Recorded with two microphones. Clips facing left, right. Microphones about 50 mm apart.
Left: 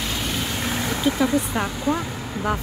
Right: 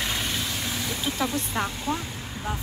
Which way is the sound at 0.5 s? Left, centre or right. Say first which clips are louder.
Left 5 dB; left.